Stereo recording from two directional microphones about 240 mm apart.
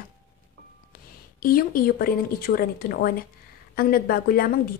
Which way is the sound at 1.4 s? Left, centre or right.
Left.